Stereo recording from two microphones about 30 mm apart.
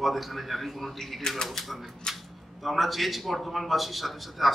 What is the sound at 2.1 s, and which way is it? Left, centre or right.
Speech, centre.